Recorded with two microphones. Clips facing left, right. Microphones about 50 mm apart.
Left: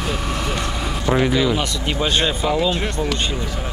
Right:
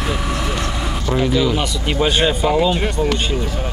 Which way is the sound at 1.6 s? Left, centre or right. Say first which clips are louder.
Right 3 dB; centre.